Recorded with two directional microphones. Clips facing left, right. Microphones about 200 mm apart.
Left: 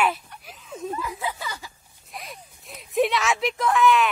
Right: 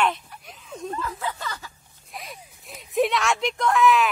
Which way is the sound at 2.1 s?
Centre (ahead or behind).